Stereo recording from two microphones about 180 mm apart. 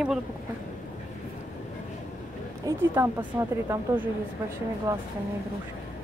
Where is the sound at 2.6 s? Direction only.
15° right (ahead or behind).